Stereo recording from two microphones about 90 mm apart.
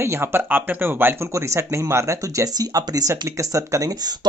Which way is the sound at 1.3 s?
35° right (ahead or behind).